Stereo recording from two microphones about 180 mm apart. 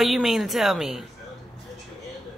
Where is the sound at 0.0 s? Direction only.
Centre (ahead or behind).